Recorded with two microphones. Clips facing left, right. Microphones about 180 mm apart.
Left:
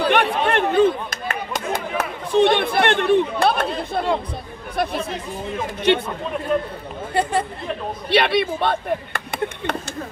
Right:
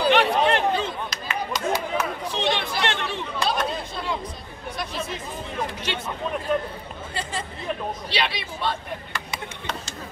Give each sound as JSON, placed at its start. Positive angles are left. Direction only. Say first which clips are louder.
{"t": 0.0, "sound": "chatter", "louder": "even", "side_deg": 55}
{"t": 3.9, "sound": "a sound", "louder": "left 8 dB", "side_deg": 55}
{"t": 4.8, "sound": "music", "louder": "left 11 dB", "side_deg": 60}
{"t": 5.9, "sound": "a man's voice", "louder": "left 13 dB", "side_deg": 55}
{"t": 7.2, "sound": "a man's voice", "louder": "left 12 dB", "side_deg": 60}
{"t": 8.1, "sound": "a sound", "louder": "left 14 dB", "side_deg": 55}